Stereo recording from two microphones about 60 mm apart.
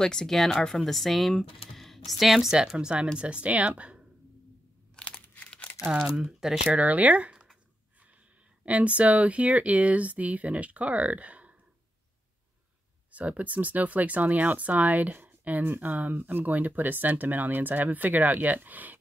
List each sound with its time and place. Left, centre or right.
0.0 s speech: centre; by 4.0 s right
4.9 s crumpling: centre
5.9 s speech: centre
6.8 s speech: right
8.6 s speech: right
13.1 s speech: right